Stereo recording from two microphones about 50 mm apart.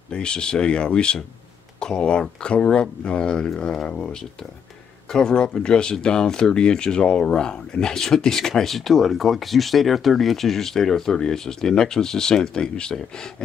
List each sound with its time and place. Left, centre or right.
0.1 s speech: centre
5.2 s speech: centre